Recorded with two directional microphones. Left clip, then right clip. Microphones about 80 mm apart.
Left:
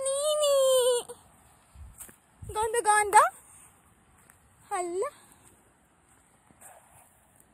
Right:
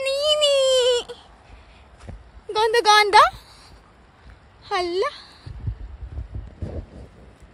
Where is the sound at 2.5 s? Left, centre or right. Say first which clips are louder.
Right 9 dB; right.